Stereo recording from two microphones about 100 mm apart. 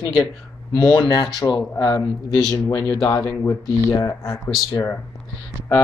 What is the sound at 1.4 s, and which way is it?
Speech, 40° left (ahead or behind).